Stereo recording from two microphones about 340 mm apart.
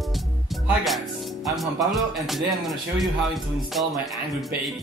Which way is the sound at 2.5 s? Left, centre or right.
Centre.